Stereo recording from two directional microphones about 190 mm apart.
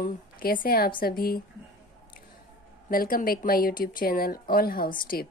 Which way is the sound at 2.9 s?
50° left (ahead or behind).